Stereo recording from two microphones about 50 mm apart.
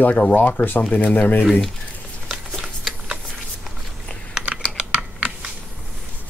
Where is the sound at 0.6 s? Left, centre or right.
Left.